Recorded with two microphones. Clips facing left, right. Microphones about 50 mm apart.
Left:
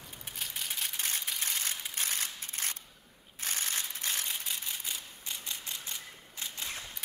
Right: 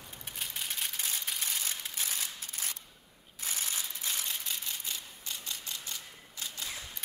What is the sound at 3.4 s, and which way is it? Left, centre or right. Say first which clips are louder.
Crushing: left 2 dB; left.